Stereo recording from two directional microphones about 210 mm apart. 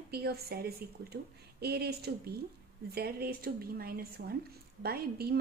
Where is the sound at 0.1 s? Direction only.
50° right (ahead or behind).